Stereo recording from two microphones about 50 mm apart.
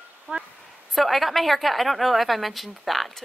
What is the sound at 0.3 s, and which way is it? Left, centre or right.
Speech, right.